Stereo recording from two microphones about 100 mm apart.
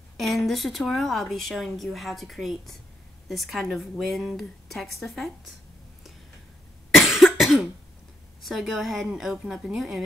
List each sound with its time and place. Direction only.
0.2 s a woman's voice: centre (ahead or behind)
6.9 s cough: centre (ahead or behind)
8.4 s a woman's voice: centre (ahead or behind)